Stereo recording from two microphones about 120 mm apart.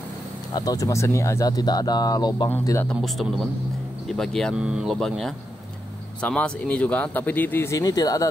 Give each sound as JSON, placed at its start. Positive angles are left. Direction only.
{"t": 0.5, "sound": "speech", "side_deg": 35}
{"t": 2.8, "sound": "speech", "side_deg": 5}
{"t": 4.6, "sound": "speech", "side_deg": -5}
{"t": 4.9, "sound": "speech", "side_deg": 5}
{"t": 7.7, "sound": "speech", "side_deg": 30}